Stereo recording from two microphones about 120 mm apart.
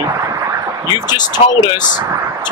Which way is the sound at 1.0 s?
35° left (ahead or behind).